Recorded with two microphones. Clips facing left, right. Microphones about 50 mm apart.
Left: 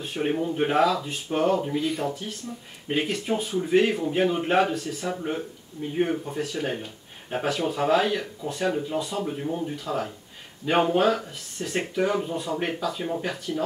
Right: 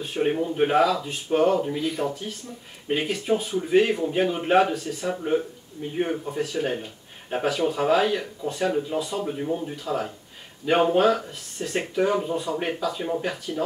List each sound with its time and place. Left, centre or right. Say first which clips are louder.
0.0 s speech: right 2 dB; centre